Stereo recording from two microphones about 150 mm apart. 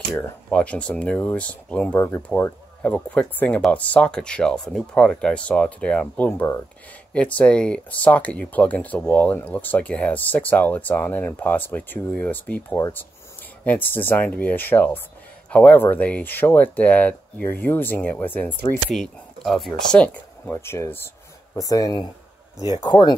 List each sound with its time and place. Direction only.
0.1 s speech: 10° left (ahead or behind); by 23.1 s 30° left (ahead or behind)